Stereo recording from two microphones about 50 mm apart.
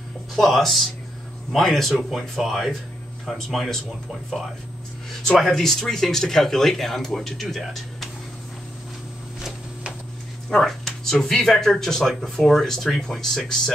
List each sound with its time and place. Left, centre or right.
0.4 s speech: centre
10.6 s speech: centre